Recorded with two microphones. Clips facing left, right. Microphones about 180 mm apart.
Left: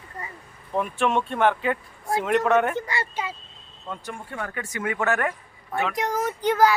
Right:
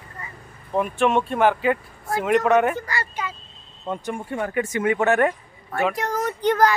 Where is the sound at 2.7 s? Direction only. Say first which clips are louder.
Left 1 dB; 25° left (ahead or behind).